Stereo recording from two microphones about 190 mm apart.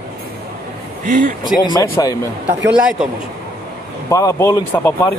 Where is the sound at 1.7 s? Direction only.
15° left (ahead or behind).